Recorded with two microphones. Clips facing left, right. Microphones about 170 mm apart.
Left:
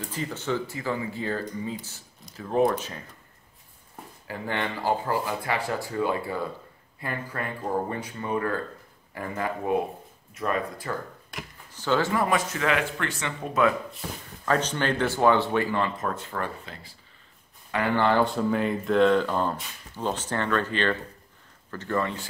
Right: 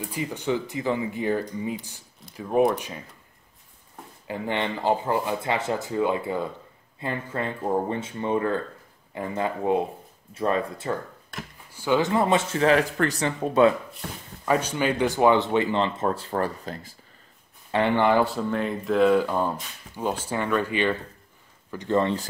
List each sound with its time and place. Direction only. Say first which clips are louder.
0.0 s speech: right 3 dB; 15° right (ahead or behind)
4.3 s speech: right 3 dB; 20° right (ahead or behind)
11.7 s speech: right 2 dB; 10° right (ahead or behind)
12.1 s speech: right 3 dB; 25° right (ahead or behind)
14.4 s speech: right 2 dB; 10° right (ahead or behind); by 16.9 s 40° right (ahead or behind)
17.6 s speech: right 3 dB; 25° right (ahead or behind)
18.2 s speech: left 1 dB; centre (ahead or behind); by 22.1 s 20° right (ahead or behind)